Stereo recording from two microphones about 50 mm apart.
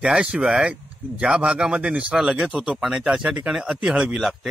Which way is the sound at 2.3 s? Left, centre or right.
Centre.